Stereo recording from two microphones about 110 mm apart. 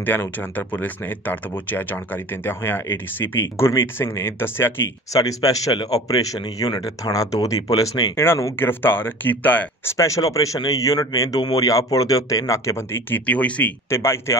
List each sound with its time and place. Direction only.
0.0 s speech: 15° left (ahead or behind)
5.1 s a man's voice: 30° left (ahead or behind); by 9.9 s 15° left (ahead or behind)
9.9 s a man's voice: 30° left (ahead or behind)